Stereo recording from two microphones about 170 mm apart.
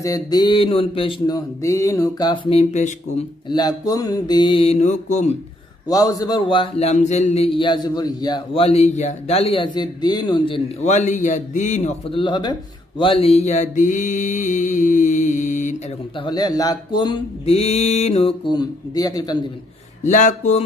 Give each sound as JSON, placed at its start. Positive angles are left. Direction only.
{"t": 0.0, "sound": "speech", "side_deg": 20}
{"t": 2.6, "sound": "speech", "side_deg": 45}
{"t": 3.4, "sound": "speech", "side_deg": 25}
{"t": 5.9, "sound": "a man's voice", "side_deg": 20}
{"t": 16.2, "sound": "a man's voice", "side_deg": 25}
{"t": 18.5, "sound": "speech", "side_deg": 25}
{"t": 20.0, "sound": "speech", "side_deg": 45}